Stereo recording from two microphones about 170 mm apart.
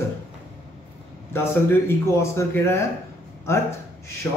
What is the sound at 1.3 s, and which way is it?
Speech, 15° left (ahead or behind).